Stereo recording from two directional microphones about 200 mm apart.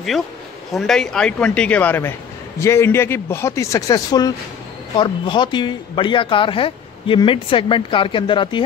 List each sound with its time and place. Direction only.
0.7 s speech: centre (ahead or behind); by 8.6 s 25° left (ahead or behind)